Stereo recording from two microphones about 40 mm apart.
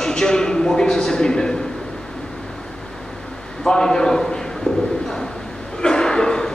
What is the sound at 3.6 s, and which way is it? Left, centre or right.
A man's voice, centre.